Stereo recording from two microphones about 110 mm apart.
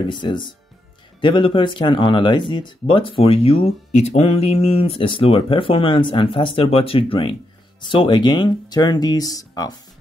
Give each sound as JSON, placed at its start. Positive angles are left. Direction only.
{"t": 0.0, "sound": "speech", "side_deg": 45}